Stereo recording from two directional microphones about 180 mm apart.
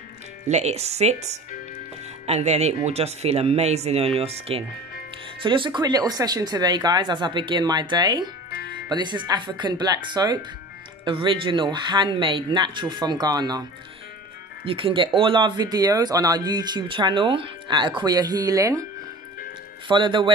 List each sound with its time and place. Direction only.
0.5 s speech: 40° right (ahead or behind); by 18.9 s 20° right (ahead or behind)
19.9 s speech: 25° right (ahead or behind)